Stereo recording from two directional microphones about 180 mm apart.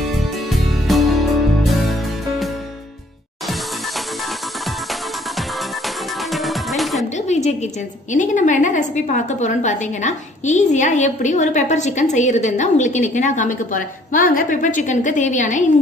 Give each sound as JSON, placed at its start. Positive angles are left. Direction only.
{"t": 0.5, "sound": "music", "side_deg": 0}
{"t": 6.3, "sound": "music", "side_deg": 0}
{"t": 7.2, "sound": "a woman's voice", "side_deg": 40}